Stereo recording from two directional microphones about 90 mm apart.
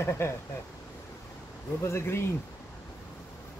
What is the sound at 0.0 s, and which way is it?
Speech, 25° left (ahead or behind).